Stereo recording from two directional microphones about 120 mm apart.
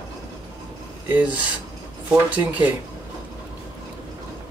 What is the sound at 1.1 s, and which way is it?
Speech, 10° right (ahead or behind).